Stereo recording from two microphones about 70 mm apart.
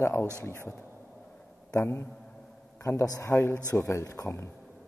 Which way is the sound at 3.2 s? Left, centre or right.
Left.